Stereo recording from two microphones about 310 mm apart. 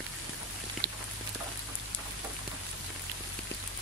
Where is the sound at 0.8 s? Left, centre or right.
Right.